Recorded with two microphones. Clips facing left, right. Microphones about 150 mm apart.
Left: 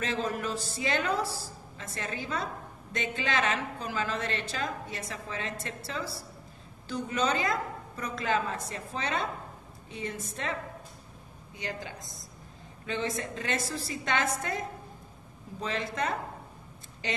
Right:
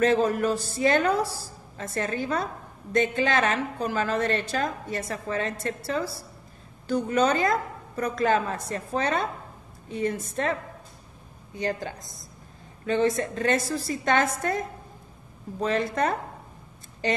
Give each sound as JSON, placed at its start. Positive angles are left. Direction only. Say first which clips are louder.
{"t": 0.0, "sound": "a woman's voice", "louder": "right 10 dB", "side_deg": -50}
{"t": 11.5, "sound": "a woman's voice", "louder": "right 8 dB", "side_deg": -45}
{"t": 15.6, "sound": "a woman's voice", "louder": "right 7 dB", "side_deg": -50}